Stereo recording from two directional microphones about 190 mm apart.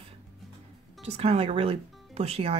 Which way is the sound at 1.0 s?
30° right (ahead or behind).